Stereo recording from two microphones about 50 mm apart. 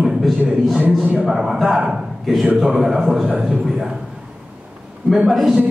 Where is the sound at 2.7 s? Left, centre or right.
Centre.